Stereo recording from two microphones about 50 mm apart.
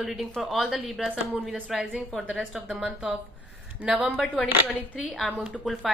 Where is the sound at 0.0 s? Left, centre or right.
Centre.